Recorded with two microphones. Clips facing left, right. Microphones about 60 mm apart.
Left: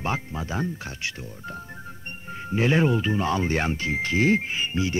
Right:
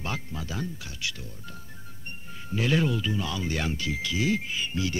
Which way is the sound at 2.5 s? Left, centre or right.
Left.